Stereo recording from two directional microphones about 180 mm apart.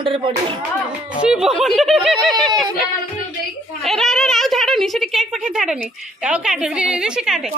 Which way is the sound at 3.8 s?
Centre (ahead or behind).